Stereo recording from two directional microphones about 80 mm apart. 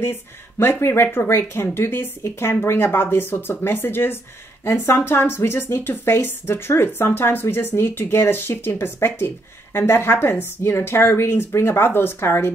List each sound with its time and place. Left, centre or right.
0.0 s speech: left